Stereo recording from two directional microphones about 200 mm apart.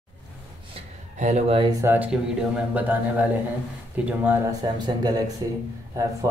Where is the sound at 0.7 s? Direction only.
30° right (ahead or behind).